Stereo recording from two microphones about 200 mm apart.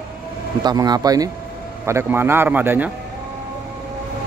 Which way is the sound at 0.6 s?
20° right (ahead or behind).